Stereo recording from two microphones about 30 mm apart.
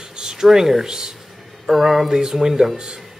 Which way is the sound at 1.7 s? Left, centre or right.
Centre.